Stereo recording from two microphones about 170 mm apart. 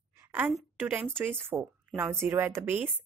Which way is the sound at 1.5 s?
20° right (ahead or behind).